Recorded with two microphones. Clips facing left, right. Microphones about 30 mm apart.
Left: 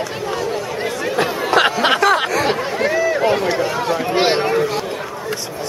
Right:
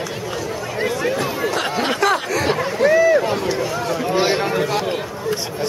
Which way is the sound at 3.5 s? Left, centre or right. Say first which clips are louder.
Left 3 dB; left.